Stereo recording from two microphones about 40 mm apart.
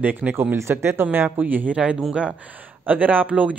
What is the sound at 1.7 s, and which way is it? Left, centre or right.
Speech, right.